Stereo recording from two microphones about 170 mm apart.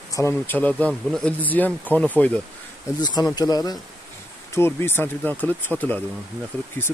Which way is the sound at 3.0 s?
25° left (ahead or behind).